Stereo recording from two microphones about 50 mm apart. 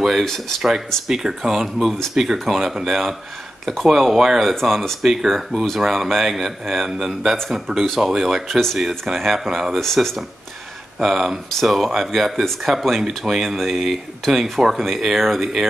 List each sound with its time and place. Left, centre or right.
0.2 s speech: centre
0.6 s speech: centre
8.5 s speech: centre
8.7 s speech: centre